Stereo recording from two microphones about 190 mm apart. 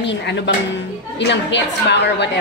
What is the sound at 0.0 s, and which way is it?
A woman's voice, 65° left (ahead or behind).